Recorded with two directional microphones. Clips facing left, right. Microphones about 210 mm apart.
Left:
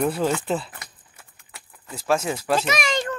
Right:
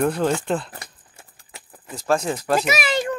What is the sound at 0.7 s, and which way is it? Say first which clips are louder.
Patter: right 4 dB; 30° right (ahead or behind).